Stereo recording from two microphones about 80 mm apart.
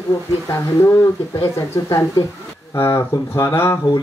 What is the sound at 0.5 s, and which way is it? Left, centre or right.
Speech, left.